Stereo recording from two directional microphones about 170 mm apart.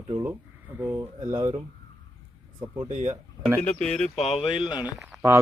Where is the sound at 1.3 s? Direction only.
25° right (ahead or behind).